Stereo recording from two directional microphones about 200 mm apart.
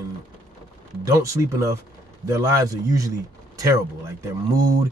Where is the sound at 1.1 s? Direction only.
15° right (ahead or behind).